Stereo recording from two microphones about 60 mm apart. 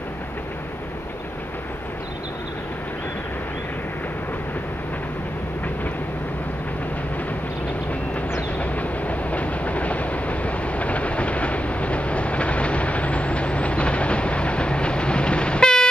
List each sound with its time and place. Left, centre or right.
8.5 s train: left